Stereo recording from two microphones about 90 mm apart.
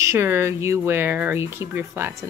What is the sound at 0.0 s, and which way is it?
Speech, 30° right (ahead or behind).